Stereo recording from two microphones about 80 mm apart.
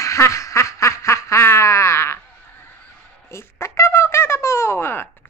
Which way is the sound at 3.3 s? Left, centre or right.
Left.